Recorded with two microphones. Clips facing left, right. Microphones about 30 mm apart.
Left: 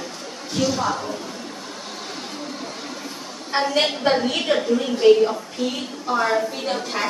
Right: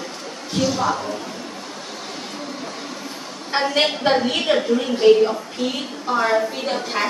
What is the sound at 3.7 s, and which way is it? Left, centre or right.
A woman's voice, centre.